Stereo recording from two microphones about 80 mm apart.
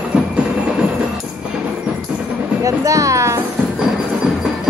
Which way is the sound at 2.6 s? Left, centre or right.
Right.